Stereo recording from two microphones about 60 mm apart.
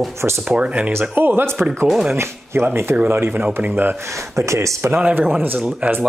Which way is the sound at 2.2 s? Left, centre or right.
Right.